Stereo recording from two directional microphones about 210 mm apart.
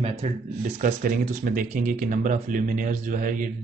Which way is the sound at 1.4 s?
40° right (ahead or behind).